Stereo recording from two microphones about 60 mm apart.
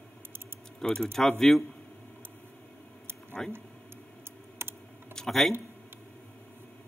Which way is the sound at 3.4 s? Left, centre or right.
Centre.